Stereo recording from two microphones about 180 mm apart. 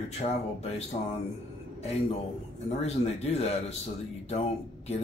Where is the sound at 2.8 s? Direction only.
35° left (ahead or behind).